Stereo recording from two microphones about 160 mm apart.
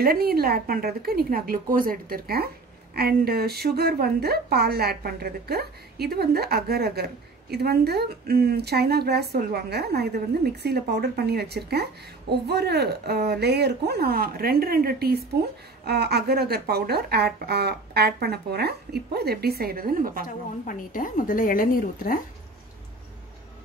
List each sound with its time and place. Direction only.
0.0 s a woman's voice: 70° right (ahead or behind)
15.8 s a woman's voice: 90° right; by 20.2 s 60° right (ahead or behind)
20.6 s a woman's voice: 55° left (ahead or behind)